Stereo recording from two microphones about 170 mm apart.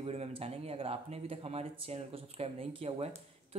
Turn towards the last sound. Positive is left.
turn(degrees=-35)  # may be behind; listen again after turning